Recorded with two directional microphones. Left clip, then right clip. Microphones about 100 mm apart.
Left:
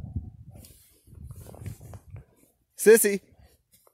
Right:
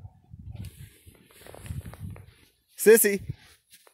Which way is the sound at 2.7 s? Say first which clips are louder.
Even; centre (ahead or behind).